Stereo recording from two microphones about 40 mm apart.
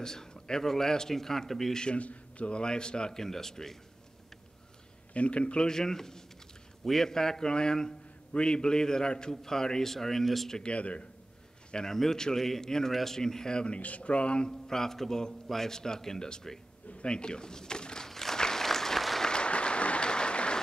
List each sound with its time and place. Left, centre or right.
0.0 s a man's voice: centre
2.0 s speech: left; by 3.7 s centre
5.1 s speech: left
5.7 s a man's voice: centre
10.6 s speech: left
11.7 s a man's voice: centre
13.7 s speech: left
14.7 s a man's voice: centre
18.0 s applause: centre
19.2 s applause: left